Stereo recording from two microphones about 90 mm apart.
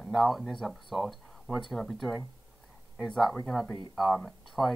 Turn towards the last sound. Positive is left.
turn(degrees=0)  # may be behind; listen again after turning